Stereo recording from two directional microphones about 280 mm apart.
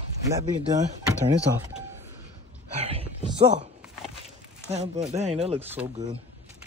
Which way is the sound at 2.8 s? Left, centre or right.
Right.